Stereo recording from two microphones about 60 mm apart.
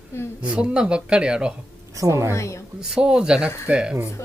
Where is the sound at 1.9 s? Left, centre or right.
Right.